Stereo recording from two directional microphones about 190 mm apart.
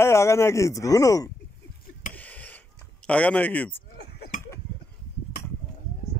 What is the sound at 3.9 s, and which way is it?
Chink, 55° left (ahead or behind).